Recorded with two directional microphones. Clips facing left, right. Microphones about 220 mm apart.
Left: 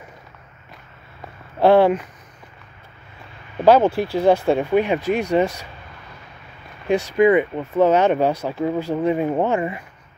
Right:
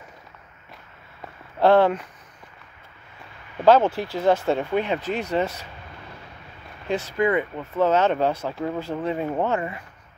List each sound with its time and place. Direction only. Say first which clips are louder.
1.6 s speech: left 3 dB; 10° left (ahead or behind)
3.6 s speech: left 3 dB; 10° left (ahead or behind)
6.9 s speech: left 7 dB; 15° left (ahead or behind)